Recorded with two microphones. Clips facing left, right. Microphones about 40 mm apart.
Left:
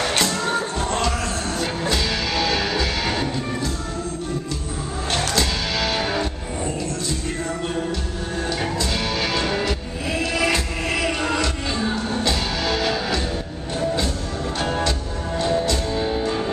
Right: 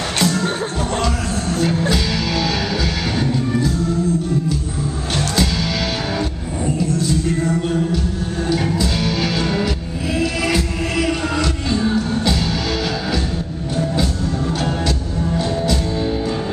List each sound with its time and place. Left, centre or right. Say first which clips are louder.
0.2 s music: right 4 dB; centre
1.6 s music: right 5 dB; centre
6.8 s music: right 7 dB; centre
15.3 s music: even; centre